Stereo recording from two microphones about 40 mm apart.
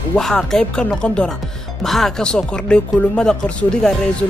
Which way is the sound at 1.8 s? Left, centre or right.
Centre.